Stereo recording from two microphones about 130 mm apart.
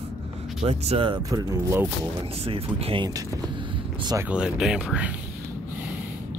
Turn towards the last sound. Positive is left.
turn(degrees=-10)  # may be behind; listen again after turning